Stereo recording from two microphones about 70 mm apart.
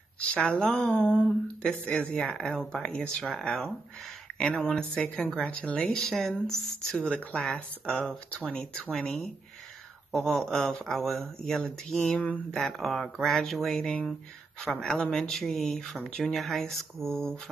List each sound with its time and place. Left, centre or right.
0.3 s speech: centre
3.3 s speech: centre
4.4 s speech: centre
8.9 s speech: centre
12.5 s speech: centre